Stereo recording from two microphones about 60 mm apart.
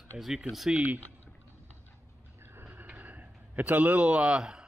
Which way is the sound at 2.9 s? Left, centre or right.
Right.